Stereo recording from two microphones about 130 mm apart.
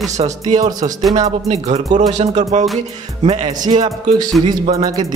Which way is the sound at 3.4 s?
35° right (ahead or behind).